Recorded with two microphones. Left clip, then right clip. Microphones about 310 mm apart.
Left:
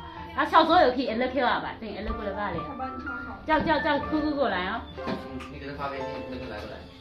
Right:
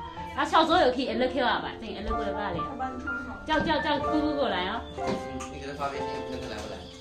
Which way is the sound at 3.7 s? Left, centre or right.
Centre.